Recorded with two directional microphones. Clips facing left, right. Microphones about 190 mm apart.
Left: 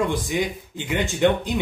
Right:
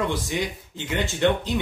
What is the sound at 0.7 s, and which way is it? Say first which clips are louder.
Speech: left 2 dB; 15° left (ahead or behind).